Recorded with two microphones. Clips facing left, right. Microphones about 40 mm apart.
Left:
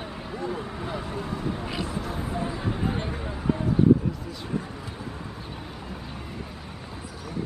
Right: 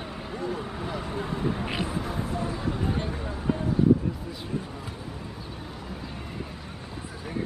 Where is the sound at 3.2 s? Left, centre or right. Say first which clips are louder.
Left 1 dB; centre.